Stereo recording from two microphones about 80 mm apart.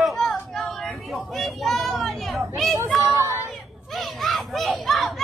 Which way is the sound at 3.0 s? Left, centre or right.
Right.